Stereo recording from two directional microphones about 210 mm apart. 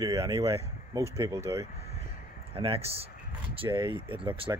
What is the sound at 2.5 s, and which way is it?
Speech, 25° right (ahead or behind).